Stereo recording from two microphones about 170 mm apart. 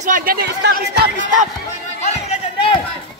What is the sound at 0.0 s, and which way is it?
Speech, 55° right (ahead or behind).